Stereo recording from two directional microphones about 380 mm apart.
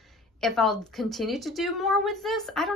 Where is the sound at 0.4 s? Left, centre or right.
Centre.